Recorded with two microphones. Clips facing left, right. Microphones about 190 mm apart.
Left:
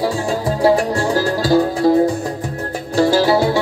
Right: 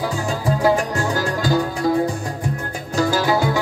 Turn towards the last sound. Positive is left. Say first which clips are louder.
# left 5 dB
turn(degrees=35)  # may be behind; listen again after turning